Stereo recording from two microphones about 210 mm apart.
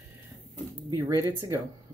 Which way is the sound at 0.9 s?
15° right (ahead or behind).